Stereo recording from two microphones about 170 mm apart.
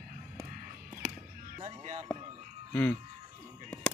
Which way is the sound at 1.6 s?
40° right (ahead or behind).